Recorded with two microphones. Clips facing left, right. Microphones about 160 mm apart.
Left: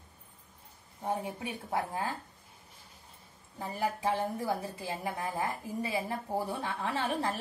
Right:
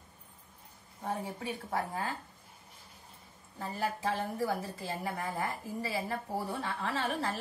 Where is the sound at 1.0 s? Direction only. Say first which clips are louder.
Left 2 dB; 15° left (ahead or behind).